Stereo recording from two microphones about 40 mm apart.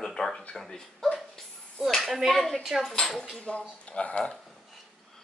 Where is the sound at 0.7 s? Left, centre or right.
Centre.